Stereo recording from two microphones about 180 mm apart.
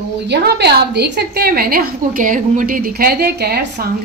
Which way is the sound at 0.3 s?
65° right (ahead or behind).